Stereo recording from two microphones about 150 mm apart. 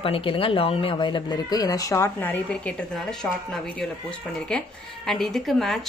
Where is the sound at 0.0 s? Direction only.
35° left (ahead or behind).